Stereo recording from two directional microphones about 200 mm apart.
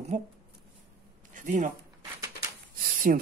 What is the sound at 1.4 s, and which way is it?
Speech, 40° right (ahead or behind).